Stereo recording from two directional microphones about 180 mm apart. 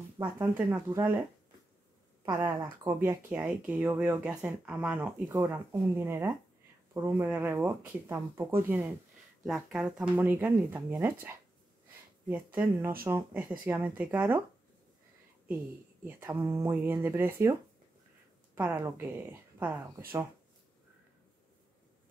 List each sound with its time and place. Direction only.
0.2 s speech: 15° right (ahead or behind)
2.3 s speech: 15° right (ahead or behind)
16.0 s a woman's voice: 10° right (ahead or behind)